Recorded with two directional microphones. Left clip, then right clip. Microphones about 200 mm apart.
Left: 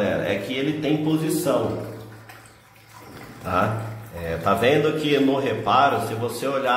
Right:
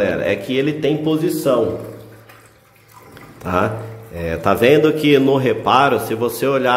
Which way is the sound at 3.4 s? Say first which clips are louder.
Right 4 dB; 45° right (ahead or behind).